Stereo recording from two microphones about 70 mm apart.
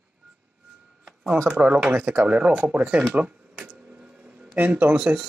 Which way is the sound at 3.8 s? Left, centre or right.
Centre.